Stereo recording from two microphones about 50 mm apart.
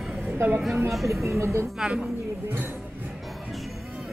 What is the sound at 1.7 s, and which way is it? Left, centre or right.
Speech, centre.